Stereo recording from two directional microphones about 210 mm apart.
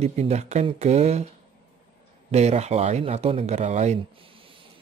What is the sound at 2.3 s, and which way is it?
Speech, 30° right (ahead or behind).